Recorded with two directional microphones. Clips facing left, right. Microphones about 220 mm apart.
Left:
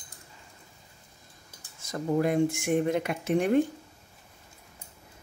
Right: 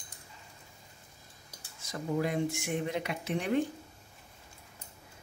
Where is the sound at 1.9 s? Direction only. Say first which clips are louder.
Left 6 dB; 50° left (ahead or behind).